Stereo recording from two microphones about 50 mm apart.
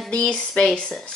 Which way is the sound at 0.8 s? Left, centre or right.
Centre.